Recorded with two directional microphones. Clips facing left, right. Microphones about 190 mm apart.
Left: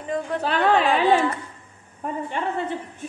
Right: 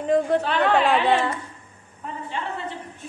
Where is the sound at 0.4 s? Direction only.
40° left (ahead or behind).